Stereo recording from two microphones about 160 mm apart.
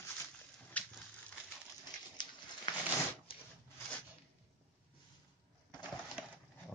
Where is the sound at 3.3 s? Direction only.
35° left (ahead or behind).